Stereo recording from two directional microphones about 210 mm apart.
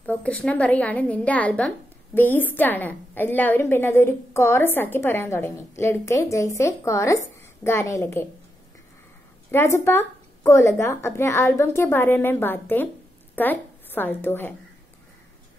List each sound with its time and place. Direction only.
0.0 s a woman's voice: 5° left (ahead or behind)
9.5 s a woman's voice: 10° left (ahead or behind)